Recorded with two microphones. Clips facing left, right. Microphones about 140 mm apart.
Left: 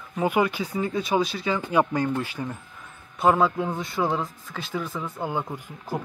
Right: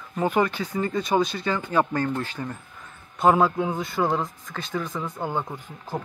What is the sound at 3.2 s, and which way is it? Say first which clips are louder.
A man's voice: right 1 dB; centre (ahead or behind).